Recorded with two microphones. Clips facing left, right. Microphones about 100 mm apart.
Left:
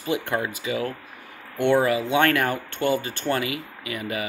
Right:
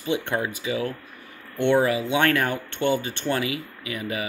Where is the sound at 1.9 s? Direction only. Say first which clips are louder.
Left 1 dB; 35° left (ahead or behind).